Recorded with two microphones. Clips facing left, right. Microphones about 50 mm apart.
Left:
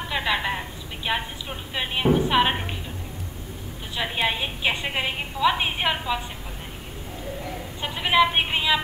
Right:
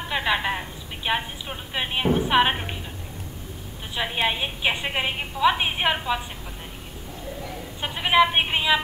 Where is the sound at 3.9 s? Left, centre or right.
Centre.